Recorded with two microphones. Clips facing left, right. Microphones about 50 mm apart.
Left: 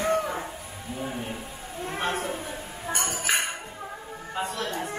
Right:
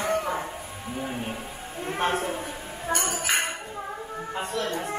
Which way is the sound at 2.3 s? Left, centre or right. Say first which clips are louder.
Right 1 dB; centre.